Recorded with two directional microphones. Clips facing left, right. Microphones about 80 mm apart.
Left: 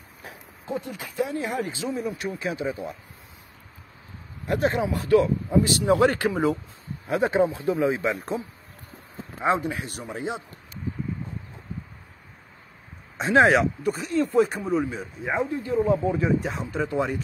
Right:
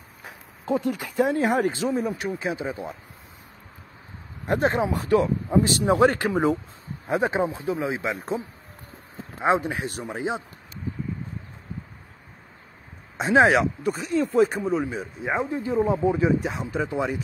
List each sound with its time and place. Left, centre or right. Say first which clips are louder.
0.7 s speech: right 7 dB; right
1.9 s speech: right 4 dB; right
2.3 s speech: even; right
4.5 s speech: right 1 dB; right
13.2 s speech: even; centre
15.5 s speech: left 1 dB; centre